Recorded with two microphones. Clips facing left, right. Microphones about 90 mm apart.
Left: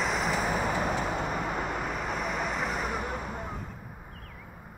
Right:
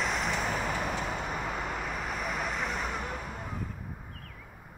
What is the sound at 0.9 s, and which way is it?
Vehicle, 40° left (ahead or behind).